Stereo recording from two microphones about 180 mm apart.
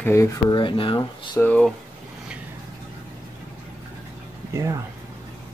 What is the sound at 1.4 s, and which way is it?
Speech, 10° left (ahead or behind).